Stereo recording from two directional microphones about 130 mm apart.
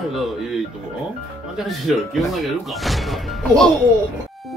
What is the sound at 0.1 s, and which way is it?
Speech, centre (ahead or behind).